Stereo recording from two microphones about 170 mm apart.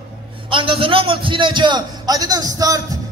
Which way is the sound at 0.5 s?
30° right (ahead or behind).